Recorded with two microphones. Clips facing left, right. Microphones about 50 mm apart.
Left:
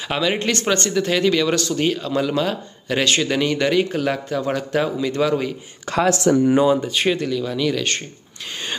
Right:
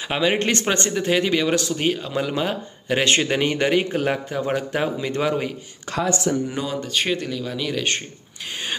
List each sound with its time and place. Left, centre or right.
0.1 s speech: centre
0.5 s speech: right
6.0 s speech: left
6.5 s speech: centre
6.9 s speech: centre